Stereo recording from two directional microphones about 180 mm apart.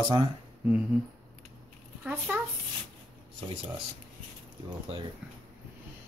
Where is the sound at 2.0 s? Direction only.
5° right (ahead or behind).